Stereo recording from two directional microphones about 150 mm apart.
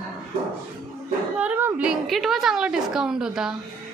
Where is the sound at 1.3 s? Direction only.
10° right (ahead or behind).